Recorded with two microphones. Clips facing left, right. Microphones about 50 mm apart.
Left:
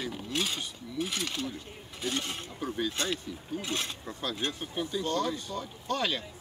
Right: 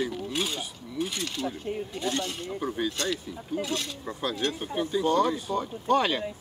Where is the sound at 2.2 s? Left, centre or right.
Left.